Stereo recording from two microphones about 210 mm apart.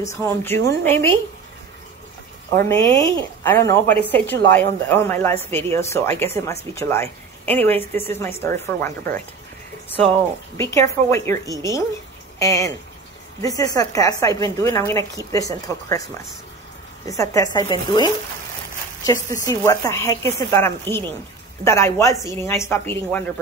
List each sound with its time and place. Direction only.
0.0 s a woman's voice: 15° left (ahead or behind)
2.5 s a woman's voice: 15° left (ahead or behind)
10.6 s a woman's voice: 15° left (ahead or behind)
17.1 s a woman's voice: 15° left (ahead or behind)